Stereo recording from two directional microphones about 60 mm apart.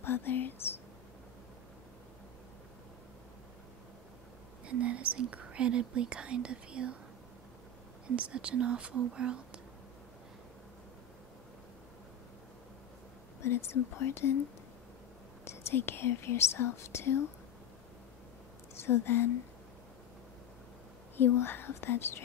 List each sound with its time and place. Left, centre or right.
0.0 s speech: left
4.6 s speech: right
8.2 s speech: centre
13.4 s speech: left
15.4 s speech: left
18.8 s a woman's voice: left
21.2 s speech: left